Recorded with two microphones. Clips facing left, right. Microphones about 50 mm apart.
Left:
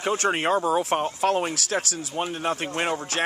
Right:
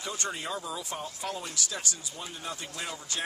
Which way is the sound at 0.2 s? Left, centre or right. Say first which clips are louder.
Left 12 dB; left.